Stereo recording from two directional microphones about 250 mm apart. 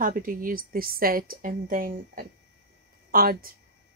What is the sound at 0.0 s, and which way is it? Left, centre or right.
Speech, right.